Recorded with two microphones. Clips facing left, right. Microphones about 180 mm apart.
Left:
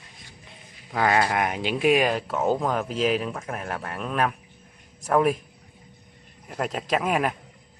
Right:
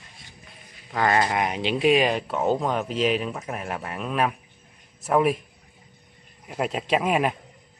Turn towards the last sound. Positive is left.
turn(degrees=-5)  # may be behind; listen again after turning